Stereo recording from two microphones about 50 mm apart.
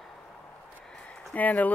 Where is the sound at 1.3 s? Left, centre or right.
Left.